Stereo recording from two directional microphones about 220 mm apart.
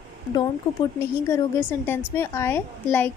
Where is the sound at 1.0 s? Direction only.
15° left (ahead or behind).